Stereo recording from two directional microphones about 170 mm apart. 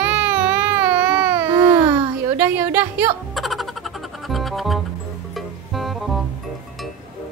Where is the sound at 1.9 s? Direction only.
10° right (ahead or behind).